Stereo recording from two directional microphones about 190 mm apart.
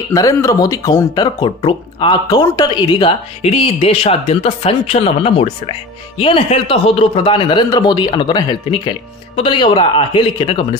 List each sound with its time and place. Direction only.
0.1 s speech: 15° left (ahead or behind)